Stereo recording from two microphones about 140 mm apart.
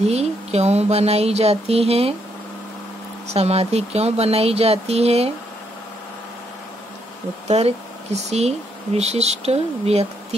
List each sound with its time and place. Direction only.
0.0 s speech: 50° right (ahead or behind)
3.3 s speech: 50° right (ahead or behind)
7.4 s speech: 50° right (ahead or behind)